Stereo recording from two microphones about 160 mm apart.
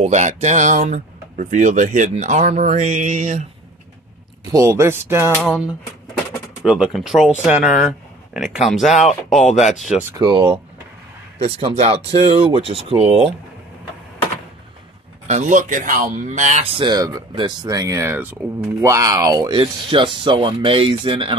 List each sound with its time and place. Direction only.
0.0 s speech: 50° right (ahead or behind)
4.5 s speech: 20° right (ahead or behind)
6.6 s speech: 5° right (ahead or behind)
9.4 s speech: 45° left (ahead or behind)
9.7 s speech: 5° right (ahead or behind)
10.1 s speech: 30° right (ahead or behind)
15.2 s speech: 50° right (ahead or behind)
16.7 s speech: 25° right (ahead or behind)
19.5 s speech: 30° right (ahead or behind)